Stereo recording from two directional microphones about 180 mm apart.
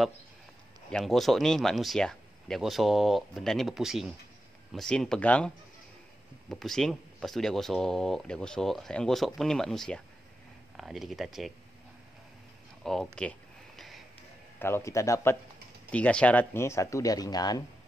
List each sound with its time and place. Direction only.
0.8 s speech: centre (ahead or behind)
6.5 s speech: centre (ahead or behind)
12.8 s a sound: centre (ahead or behind)
14.6 s speech: 15° left (ahead or behind)